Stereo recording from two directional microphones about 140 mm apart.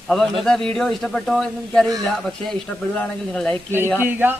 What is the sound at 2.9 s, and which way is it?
Speech, 5° left (ahead or behind).